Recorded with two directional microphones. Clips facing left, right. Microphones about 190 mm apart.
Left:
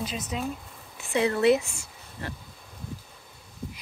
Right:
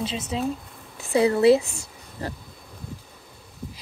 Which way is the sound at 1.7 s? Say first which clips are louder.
Right 4 dB; 35° right (ahead or behind).